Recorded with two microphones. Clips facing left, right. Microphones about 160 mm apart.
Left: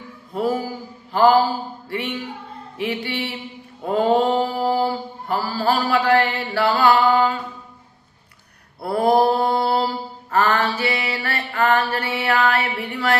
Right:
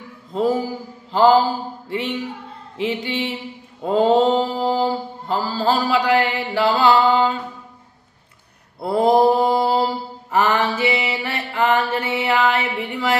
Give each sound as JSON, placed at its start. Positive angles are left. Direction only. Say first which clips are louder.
{"t": 1.1, "sound": "mantra", "louder": "right 1 dB", "side_deg": -20}
{"t": 8.8, "sound": "mantra", "louder": "right 2 dB", "side_deg": -20}